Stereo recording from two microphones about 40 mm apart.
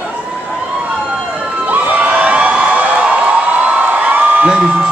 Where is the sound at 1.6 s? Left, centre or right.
Right.